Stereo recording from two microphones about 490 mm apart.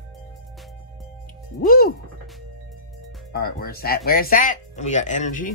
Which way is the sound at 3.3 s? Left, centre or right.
Centre.